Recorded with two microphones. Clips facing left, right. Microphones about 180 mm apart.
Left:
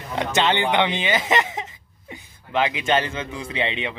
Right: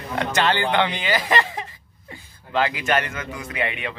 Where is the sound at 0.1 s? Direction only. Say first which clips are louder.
Left 1 dB; 20° left (ahead or behind).